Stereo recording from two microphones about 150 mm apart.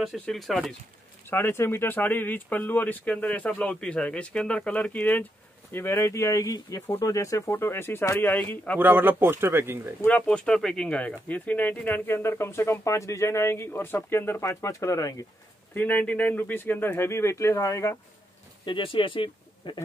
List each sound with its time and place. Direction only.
0.0 s speech: centre (ahead or behind)
1.3 s speech: 15° left (ahead or behind)
8.7 s speech: 15° right (ahead or behind)
10.0 s speech: 10° left (ahead or behind)
18.7 s speech: 35° left (ahead or behind)